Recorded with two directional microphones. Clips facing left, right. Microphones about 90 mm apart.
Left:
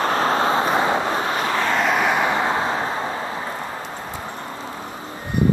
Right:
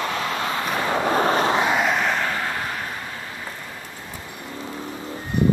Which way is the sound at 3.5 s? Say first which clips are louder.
Left 7 dB; 60° left (ahead or behind).